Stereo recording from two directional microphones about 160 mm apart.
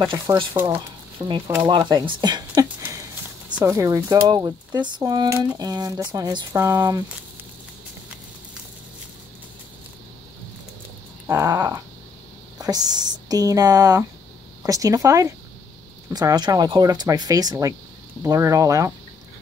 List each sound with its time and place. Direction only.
0.0 s dog: 15° right (ahead or behind)
1.2 s speech: 25° right (ahead or behind)
3.6 s speech: 20° right (ahead or behind)
11.2 s dog: 20° right (ahead or behind)
12.5 s speech: 25° right (ahead or behind)